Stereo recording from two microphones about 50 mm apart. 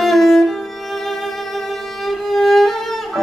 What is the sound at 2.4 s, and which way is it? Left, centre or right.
Music, centre.